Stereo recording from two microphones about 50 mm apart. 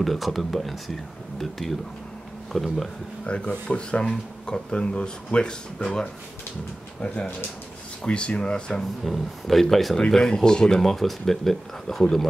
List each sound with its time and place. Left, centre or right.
0.0 s speech: centre
3.3 s speech: left
8.0 s speech: left
9.0 s speech: centre